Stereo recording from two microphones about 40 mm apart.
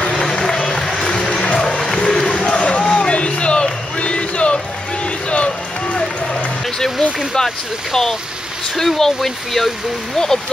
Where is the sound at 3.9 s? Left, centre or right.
Left.